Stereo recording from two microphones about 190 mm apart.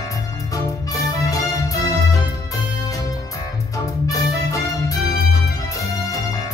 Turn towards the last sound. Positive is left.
turn(degrees=15)  # may be behind; listen again after turning